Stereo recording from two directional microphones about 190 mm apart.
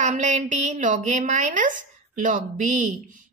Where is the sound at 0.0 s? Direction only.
40° right (ahead or behind).